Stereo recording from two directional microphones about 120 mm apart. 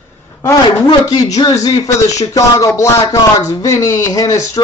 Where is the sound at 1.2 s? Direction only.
30° left (ahead or behind).